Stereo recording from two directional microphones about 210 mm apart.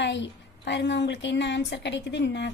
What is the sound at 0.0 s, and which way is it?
A woman's voice, 55° left (ahead or behind).